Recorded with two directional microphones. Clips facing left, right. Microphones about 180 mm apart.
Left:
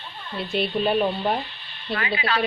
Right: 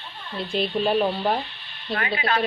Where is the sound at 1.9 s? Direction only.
50° right (ahead or behind).